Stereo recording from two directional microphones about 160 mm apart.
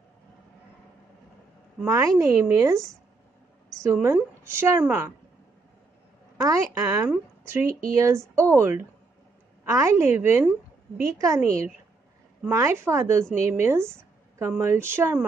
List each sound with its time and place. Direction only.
1.9 s speech: 20° right (ahead or behind)
3.8 s a woman's voice: 15° right (ahead or behind)
6.3 s a woman's voice: 20° right (ahead or behind)